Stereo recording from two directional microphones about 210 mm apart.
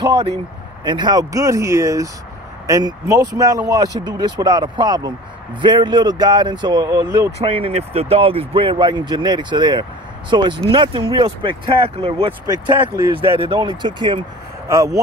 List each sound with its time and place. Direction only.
0.8 s speech: 20° right (ahead or behind)
7.3 s speech: 25° right (ahead or behind)